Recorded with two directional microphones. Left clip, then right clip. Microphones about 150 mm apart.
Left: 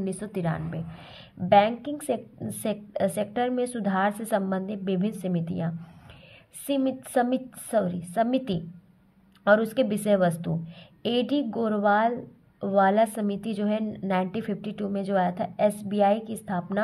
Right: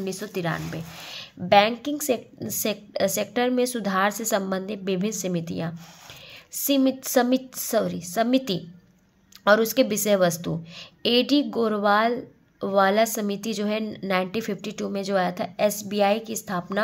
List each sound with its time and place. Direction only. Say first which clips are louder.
0.0 s a woman's voice: right 2 dB; 20° right (ahead or behind)